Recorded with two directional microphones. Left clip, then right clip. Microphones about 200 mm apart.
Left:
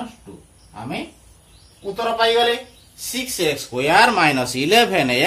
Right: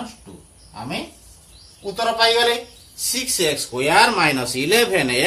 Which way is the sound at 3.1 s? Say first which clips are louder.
Right 1 dB; 40° left (ahead or behind).